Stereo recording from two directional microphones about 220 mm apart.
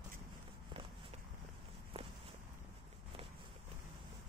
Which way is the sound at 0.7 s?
25° right (ahead or behind).